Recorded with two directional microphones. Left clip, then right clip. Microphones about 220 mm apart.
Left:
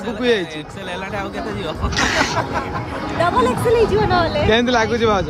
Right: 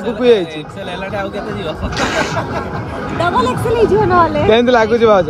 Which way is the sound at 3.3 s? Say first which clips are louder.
Right 2 dB; 30° right (ahead or behind).